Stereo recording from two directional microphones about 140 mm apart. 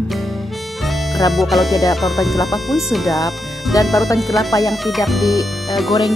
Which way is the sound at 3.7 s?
25° left (ahead or behind).